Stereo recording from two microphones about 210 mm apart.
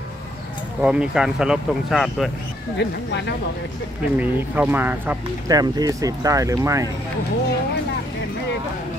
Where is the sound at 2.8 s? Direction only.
55° left (ahead or behind).